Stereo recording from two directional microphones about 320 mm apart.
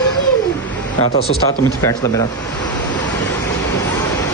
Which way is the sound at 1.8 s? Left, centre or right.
Centre.